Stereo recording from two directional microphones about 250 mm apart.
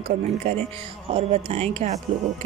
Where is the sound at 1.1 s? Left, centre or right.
Right.